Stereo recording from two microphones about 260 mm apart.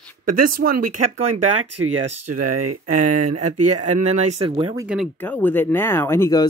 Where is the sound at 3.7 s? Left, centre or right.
Right.